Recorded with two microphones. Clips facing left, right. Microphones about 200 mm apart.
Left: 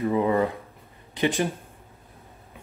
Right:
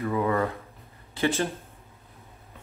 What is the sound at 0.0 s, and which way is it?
Speech, 20° left (ahead or behind).